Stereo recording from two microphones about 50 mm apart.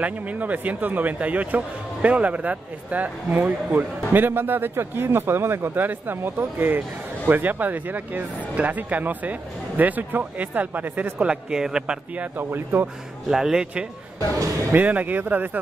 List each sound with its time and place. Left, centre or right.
0.0 s a man's voice: right
11.5 s speech: centre
12.4 s speech: right
13.3 s speech: centre
14.7 s a man's voice: right